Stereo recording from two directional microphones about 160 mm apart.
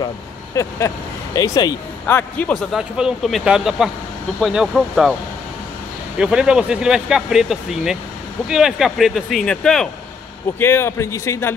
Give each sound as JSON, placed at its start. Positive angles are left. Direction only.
{"t": 0.6, "sound": "speech", "side_deg": 20}
{"t": 2.0, "sound": "speech", "side_deg": 10}
{"t": 6.1, "sound": "speech", "side_deg": -5}
{"t": 10.6, "sound": "a man's voice", "side_deg": 15}